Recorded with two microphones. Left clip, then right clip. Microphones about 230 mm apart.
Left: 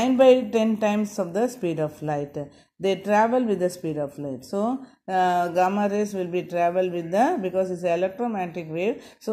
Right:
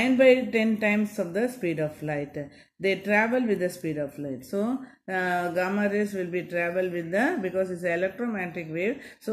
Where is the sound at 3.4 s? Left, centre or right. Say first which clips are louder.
Left 3 dB; left.